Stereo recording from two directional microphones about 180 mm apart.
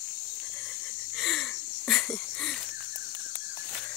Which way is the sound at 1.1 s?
Centre (ahead or behind).